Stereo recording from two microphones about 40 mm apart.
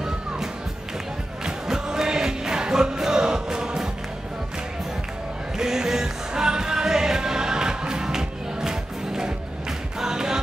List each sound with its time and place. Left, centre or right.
1.4 s music: centre
5.6 s music: centre